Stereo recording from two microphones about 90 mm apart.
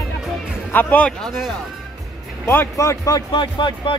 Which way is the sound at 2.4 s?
25° left (ahead or behind).